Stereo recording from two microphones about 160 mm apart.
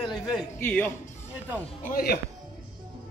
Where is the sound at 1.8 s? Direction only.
70° left (ahead or behind).